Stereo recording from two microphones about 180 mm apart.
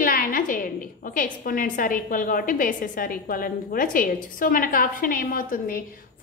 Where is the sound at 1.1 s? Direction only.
50° left (ahead or behind).